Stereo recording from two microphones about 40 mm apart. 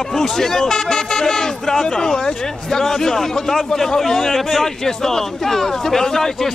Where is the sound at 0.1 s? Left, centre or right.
Centre.